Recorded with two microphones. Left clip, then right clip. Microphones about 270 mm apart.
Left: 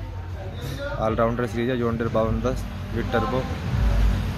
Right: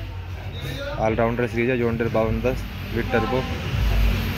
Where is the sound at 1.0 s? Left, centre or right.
Centre.